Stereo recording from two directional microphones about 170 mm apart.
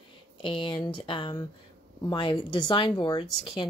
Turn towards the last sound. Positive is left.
turn(degrees=30)  # may be behind; listen again after turning